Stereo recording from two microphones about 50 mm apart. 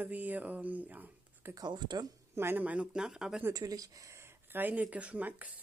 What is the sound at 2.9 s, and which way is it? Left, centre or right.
Speech, centre.